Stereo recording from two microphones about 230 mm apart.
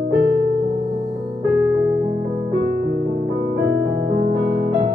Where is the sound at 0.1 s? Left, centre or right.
Right.